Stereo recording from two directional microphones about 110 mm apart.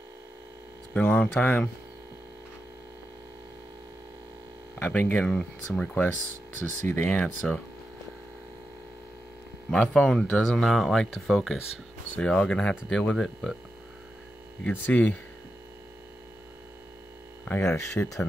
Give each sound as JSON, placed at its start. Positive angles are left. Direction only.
{"t": 0.9, "sound": "speech", "side_deg": 10}
{"t": 4.7, "sound": "speech", "side_deg": 20}
{"t": 9.7, "sound": "speech", "side_deg": 10}
{"t": 10.6, "sound": "speech", "side_deg": 0}
{"t": 14.7, "sound": "speech", "side_deg": 15}
{"t": 17.5, "sound": "speech", "side_deg": 20}